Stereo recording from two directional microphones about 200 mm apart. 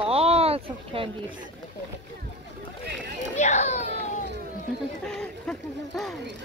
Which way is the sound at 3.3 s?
35° left (ahead or behind).